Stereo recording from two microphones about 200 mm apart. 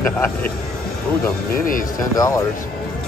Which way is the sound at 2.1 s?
15° left (ahead or behind).